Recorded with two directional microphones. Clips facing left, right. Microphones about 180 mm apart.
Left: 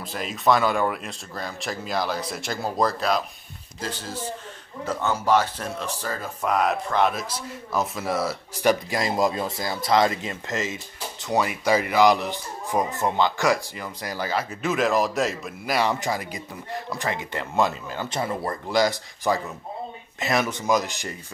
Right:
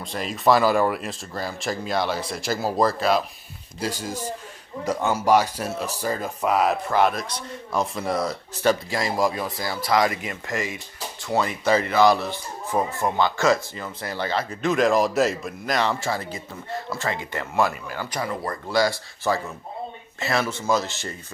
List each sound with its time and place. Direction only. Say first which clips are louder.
0.0 s a man's voice: right 2 dB; centre (ahead or behind)
8.9 s a man's voice: even; 20° left (ahead or behind)